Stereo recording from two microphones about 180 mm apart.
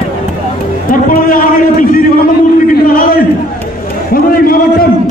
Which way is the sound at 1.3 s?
50° left (ahead or behind).